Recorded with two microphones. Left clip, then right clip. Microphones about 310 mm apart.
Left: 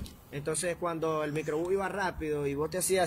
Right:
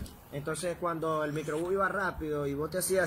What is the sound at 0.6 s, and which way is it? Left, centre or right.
Speech, left.